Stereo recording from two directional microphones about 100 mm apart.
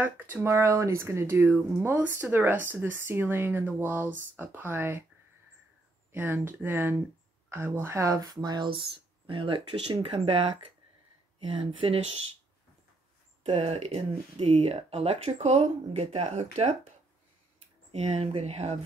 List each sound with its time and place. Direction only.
0.0 s speech: 20° right (ahead or behind)
6.1 s speech: 20° right (ahead or behind); by 8.8 s 45° right (ahead or behind)
9.3 s speech: 60° right (ahead or behind)
13.5 s speech: 90° right
17.9 s speech: 90° right